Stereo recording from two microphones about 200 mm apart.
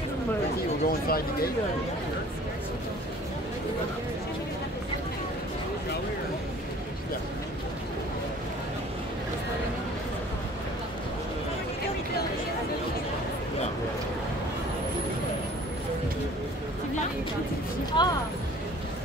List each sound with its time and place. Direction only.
0.8 s speech: 50° left (ahead or behind)
17.9 s speech: 20° left (ahead or behind)